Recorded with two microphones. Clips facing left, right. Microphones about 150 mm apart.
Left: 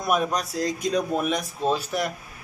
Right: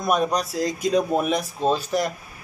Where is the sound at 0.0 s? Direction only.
5° left (ahead or behind).